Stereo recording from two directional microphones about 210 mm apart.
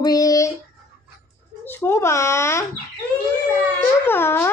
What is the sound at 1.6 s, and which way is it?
A child's voice, 10° left (ahead or behind).